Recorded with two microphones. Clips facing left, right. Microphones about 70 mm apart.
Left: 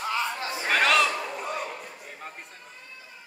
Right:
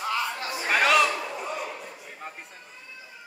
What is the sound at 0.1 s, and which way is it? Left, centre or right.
Chatter, left.